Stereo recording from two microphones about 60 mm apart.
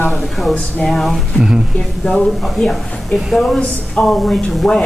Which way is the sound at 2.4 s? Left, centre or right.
Centre.